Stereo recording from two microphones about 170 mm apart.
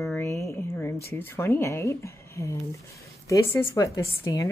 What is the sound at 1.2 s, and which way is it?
Speech, 15° left (ahead or behind).